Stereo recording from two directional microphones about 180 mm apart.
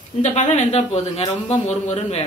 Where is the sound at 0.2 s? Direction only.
40° left (ahead or behind).